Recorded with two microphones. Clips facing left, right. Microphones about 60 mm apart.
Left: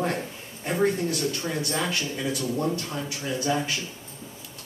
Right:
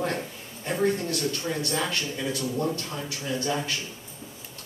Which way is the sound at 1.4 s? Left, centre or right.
Centre.